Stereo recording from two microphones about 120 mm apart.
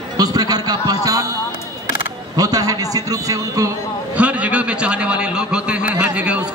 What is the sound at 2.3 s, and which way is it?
A man's voice, 30° right (ahead or behind).